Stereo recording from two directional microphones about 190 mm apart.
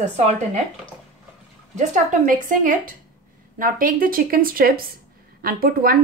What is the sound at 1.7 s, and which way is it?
A woman's voice, 40° right (ahead or behind).